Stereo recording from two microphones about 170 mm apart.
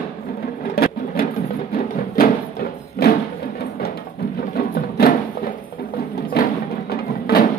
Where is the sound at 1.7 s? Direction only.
55° left (ahead or behind).